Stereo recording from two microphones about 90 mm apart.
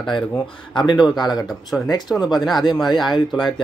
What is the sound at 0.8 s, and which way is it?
Speech, 60° left (ahead or behind).